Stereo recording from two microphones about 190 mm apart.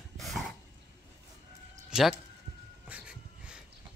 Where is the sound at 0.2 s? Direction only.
Centre (ahead or behind).